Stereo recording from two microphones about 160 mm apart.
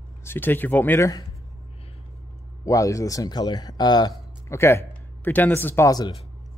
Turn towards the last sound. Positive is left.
turn(degrees=20)  # may be behind; listen again after turning